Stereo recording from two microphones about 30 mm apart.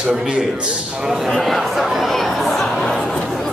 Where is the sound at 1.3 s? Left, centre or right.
Centre.